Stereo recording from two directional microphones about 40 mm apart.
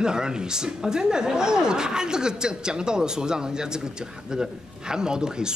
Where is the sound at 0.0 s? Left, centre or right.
Centre.